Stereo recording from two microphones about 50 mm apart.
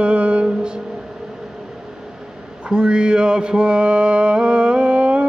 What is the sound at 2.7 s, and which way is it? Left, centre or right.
Mantra, centre.